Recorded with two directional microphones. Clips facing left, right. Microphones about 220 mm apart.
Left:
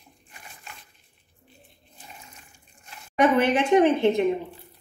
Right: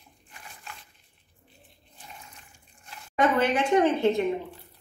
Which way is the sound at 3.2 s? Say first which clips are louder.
Left 3 dB; 20° left (ahead or behind).